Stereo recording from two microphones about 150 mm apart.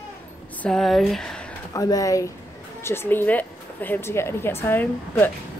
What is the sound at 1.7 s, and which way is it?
Speech, 25° left (ahead or behind).